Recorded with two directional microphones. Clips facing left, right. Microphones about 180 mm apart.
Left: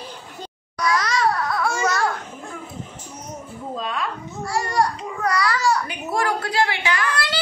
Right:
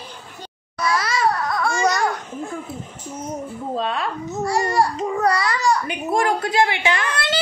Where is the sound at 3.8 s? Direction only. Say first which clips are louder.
Right 3 dB; 30° right (ahead or behind).